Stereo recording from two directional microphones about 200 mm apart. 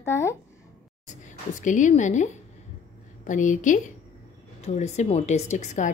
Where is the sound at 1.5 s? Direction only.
40° left (ahead or behind).